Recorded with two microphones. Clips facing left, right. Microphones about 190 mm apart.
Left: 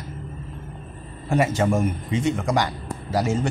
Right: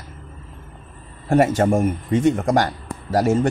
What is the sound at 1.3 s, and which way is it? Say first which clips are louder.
Speech: right 4 dB; 50° right (ahead or behind).